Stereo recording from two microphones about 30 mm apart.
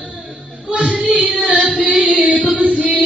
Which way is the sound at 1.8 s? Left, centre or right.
Right.